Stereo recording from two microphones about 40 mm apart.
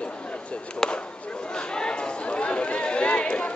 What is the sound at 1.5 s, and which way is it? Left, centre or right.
Chatter, left.